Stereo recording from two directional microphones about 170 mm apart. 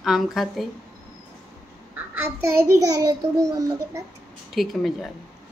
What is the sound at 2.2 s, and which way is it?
A child's voice, 15° right (ahead or behind).